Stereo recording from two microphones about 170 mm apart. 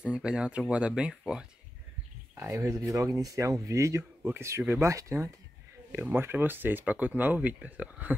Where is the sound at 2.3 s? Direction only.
15° right (ahead or behind).